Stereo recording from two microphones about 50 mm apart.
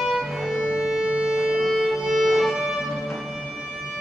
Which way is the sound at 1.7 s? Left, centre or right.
Centre.